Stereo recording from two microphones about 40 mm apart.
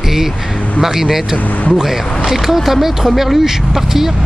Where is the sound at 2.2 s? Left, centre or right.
Centre.